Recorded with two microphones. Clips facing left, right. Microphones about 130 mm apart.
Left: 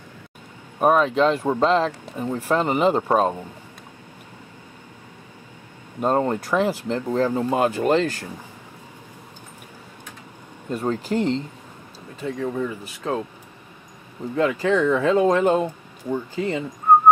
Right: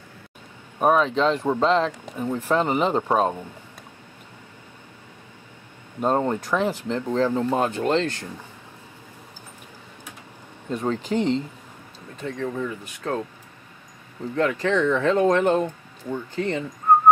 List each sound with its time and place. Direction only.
0.7 s speech: 5° left (ahead or behind)
5.9 s speech: 5° left (ahead or behind)
10.7 s speech: 5° left (ahead or behind)
11.1 s speech: 35° left (ahead or behind)
12.2 s speech: 10° left (ahead or behind)
14.3 s speech: 10° left (ahead or behind)